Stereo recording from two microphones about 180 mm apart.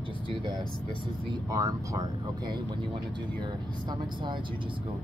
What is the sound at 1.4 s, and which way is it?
Speech, 20° right (ahead or behind).